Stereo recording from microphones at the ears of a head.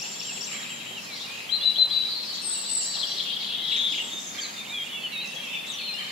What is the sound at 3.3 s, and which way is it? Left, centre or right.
Bird, left.